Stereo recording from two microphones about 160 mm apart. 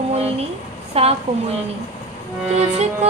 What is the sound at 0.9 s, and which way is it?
Speech, 40° right (ahead or behind).